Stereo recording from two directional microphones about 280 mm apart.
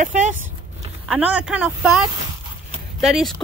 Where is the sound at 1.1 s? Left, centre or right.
Centre.